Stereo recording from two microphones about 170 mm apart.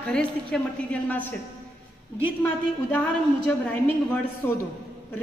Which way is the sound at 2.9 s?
10° left (ahead or behind).